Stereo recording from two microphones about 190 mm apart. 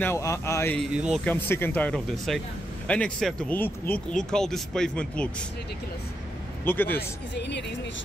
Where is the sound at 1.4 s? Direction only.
10° left (ahead or behind).